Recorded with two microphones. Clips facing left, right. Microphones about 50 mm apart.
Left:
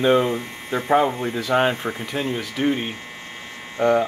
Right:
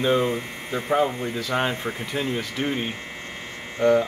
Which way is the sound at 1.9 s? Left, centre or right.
Centre.